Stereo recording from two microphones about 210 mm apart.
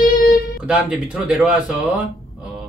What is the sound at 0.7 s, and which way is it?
Speech, 5° right (ahead or behind).